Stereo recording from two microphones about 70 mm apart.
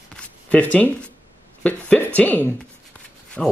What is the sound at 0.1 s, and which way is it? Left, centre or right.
Shuffling cards, centre.